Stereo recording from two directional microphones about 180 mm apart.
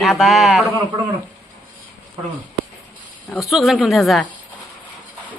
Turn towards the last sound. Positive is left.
turn(degrees=0)  # may be behind; listen again after turning